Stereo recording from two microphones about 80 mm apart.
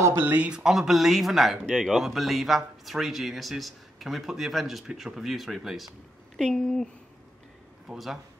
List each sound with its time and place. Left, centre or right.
0.0 s speech: right
0.7 s speech: centre
7.9 s speech: centre